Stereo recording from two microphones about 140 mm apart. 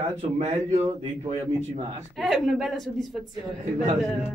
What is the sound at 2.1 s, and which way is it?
A woman's voice, centre (ahead or behind).